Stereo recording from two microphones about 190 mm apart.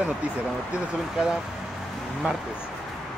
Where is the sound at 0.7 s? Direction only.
5° right (ahead or behind).